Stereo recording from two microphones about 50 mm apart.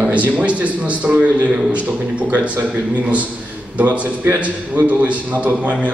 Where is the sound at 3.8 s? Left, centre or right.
Right.